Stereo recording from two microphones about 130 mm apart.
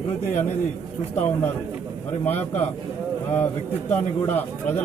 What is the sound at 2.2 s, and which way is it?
Speech, 15° left (ahead or behind).